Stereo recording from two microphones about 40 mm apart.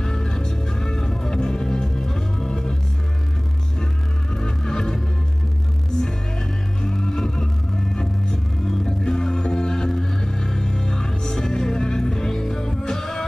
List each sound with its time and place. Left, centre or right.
0.0 s music: centre
4.4 s organ: centre
6.8 s music: centre